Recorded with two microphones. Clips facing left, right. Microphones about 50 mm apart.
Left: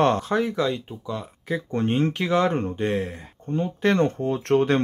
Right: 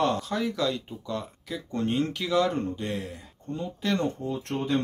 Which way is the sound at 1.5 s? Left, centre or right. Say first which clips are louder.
Left 5 dB; left.